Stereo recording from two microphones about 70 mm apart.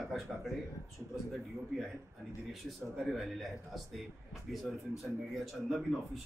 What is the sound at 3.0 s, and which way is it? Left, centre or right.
A man's voice, centre.